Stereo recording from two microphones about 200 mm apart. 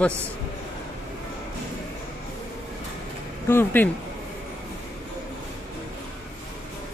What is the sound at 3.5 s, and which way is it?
Speech, 10° left (ahead or behind).